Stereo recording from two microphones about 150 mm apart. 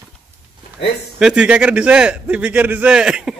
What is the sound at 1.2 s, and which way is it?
A man's voice, 5° right (ahead or behind).